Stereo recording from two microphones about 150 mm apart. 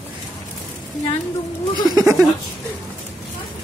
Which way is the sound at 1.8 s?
20° right (ahead or behind).